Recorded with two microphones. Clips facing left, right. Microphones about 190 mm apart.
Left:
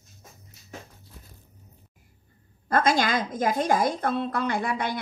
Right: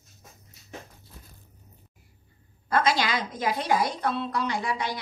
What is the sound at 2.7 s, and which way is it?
A woman's voice, 50° left (ahead or behind).